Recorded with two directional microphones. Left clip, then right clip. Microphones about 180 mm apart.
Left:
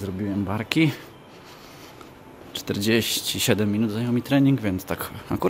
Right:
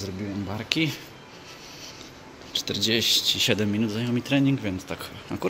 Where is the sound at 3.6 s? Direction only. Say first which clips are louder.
Left 2 dB; 10° left (ahead or behind); by 5.4 s 30° left (ahead or behind).